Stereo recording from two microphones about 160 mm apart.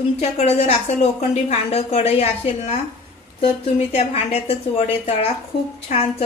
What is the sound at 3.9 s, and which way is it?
A woman's voice, 40° left (ahead or behind).